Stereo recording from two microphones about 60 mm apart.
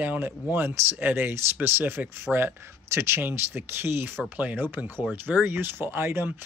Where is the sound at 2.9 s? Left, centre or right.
Right.